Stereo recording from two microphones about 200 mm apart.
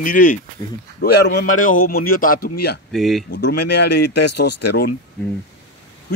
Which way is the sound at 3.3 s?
55° left (ahead or behind).